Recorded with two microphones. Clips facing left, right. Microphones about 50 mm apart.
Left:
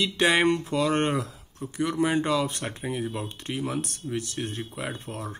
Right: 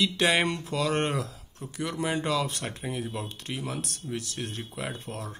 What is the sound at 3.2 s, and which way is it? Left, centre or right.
Speech, left.